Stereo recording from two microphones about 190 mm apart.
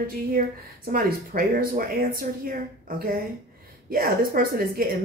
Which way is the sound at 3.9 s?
50° right (ahead or behind).